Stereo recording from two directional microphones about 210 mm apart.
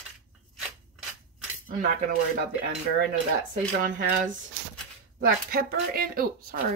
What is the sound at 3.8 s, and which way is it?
Speech, 40° right (ahead or behind).